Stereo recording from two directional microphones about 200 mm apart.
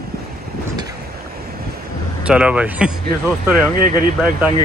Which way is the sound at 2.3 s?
5° right (ahead or behind).